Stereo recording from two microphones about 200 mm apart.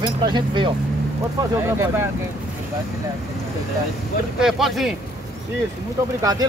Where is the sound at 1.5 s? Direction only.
10° right (ahead or behind).